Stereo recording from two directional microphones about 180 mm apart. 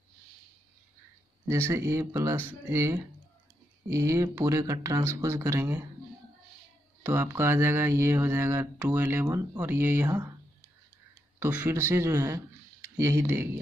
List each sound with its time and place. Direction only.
1.5 s speech: 15° right (ahead or behind)
7.0 s speech: 10° right (ahead or behind)
11.3 s speech: 10° right (ahead or behind)